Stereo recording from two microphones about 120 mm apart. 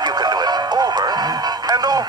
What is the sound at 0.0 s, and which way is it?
Music, 35° right (ahead or behind).